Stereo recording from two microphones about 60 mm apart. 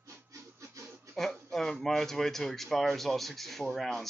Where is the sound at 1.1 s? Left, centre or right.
Centre.